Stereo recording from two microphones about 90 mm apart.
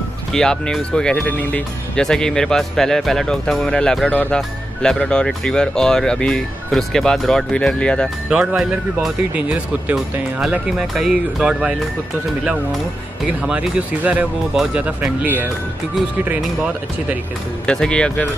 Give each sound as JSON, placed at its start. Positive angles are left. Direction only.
{"t": 0.3, "sound": "speech", "side_deg": 5}
{"t": 8.3, "sound": "speech", "side_deg": -10}
{"t": 10.8, "sound": "speech", "side_deg": -5}
{"t": 13.5, "sound": "speech", "side_deg": -15}
{"t": 17.6, "sound": "speech", "side_deg": 10}